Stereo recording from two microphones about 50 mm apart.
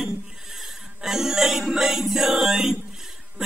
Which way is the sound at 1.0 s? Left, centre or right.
Centre.